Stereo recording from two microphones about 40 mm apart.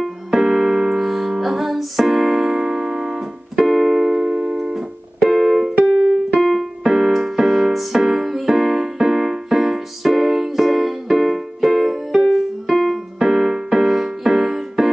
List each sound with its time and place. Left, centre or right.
0.3 s music: centre
3.6 s keyboard: centre
4.2 s music: centre
13.2 s music: centre